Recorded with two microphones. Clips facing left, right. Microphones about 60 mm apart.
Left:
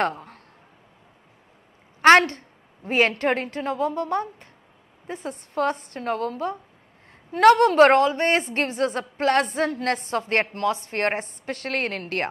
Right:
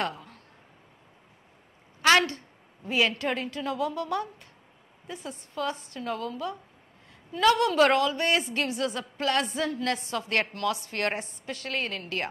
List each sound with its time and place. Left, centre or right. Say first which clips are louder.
0.0 s speech: left 7 dB; left
2.0 s a woman's voice: left 7 dB; left
5.3 s a woman's voice: left 7 dB; left